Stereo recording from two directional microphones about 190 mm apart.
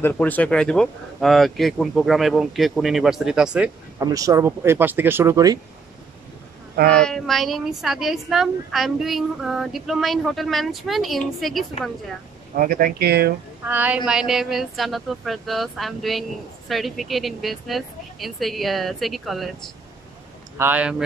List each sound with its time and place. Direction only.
0.0 s speech: 10° left (ahead or behind)
4.0 s speech: 15° right (ahead or behind)
7.1 s speech: centre (ahead or behind)
12.5 s speech: 50° right (ahead or behind)
13.7 s speech: 10° right (ahead or behind)
20.5 s speech: 10° right (ahead or behind)